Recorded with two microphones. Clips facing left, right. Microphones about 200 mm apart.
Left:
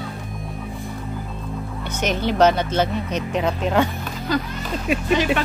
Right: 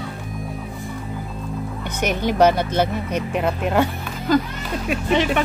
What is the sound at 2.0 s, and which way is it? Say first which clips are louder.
Speech: right 1 dB; 10° right (ahead or behind).